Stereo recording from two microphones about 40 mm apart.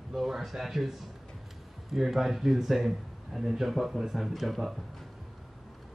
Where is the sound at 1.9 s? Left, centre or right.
Centre.